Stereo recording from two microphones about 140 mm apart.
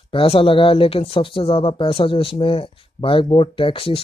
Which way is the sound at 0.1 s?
40° left (ahead or behind).